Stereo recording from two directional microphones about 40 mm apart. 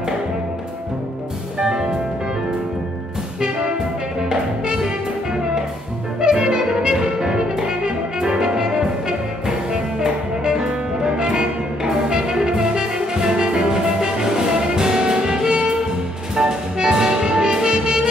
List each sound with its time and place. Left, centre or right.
1.6 s music: centre
3.3 s music: centre
6.2 s brass instrument: centre
9.7 s music: centre